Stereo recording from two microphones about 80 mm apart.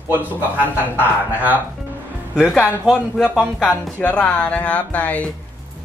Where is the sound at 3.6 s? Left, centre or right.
Centre.